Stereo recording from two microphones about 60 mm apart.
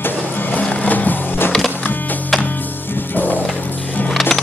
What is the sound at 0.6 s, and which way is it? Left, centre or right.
Skateboard, left.